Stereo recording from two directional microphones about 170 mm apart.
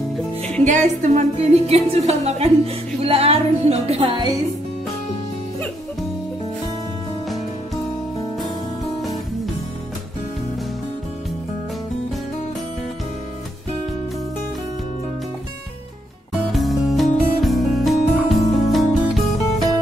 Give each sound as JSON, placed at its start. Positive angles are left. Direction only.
{"t": 0.7, "sound": "a woman's voice", "side_deg": -45}
{"t": 16.5, "sound": "music", "side_deg": 0}